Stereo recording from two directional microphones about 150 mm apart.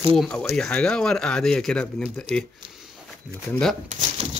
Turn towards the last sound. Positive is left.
turn(degrees=-60)  # may be behind; listen again after turning